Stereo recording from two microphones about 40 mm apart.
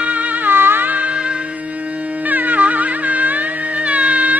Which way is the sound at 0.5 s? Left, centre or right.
Right.